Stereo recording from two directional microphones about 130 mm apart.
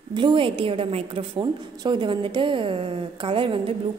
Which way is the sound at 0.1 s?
35° right (ahead or behind).